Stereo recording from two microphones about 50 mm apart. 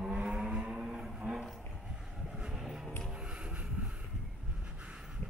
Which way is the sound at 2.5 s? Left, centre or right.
Centre.